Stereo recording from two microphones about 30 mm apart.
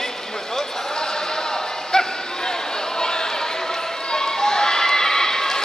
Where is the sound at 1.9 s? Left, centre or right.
Left.